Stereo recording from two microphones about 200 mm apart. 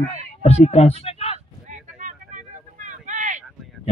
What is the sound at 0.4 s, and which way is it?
Speech, 35° left (ahead or behind).